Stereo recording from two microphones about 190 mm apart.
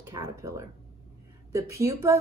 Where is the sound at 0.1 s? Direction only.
15° right (ahead or behind).